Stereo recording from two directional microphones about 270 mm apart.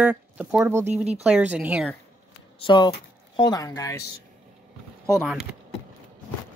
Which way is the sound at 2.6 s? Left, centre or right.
Centre.